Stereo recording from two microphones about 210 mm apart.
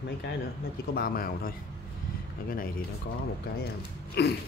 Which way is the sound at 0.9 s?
45° left (ahead or behind).